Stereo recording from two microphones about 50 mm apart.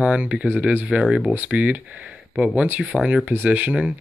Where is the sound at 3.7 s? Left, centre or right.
Centre.